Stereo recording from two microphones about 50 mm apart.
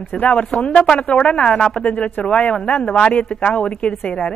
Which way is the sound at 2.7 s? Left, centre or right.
Left.